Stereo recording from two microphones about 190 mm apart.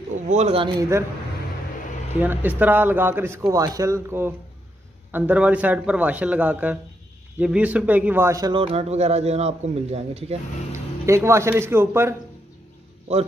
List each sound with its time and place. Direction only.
0.1 s speech: 35° right (ahead or behind)
0.7 s a man's voice: 15° right (ahead or behind)
2.1 s a man's voice: 10° right (ahead or behind); by 10.3 s 35° right (ahead or behind)
10.7 s a man's voice: 15° right (ahead or behind)
13.1 s a man's voice: 35° right (ahead or behind)